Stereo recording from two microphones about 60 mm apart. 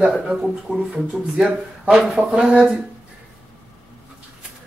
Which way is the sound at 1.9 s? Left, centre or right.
Centre.